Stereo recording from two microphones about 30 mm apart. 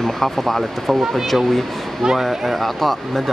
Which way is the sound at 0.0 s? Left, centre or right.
Centre.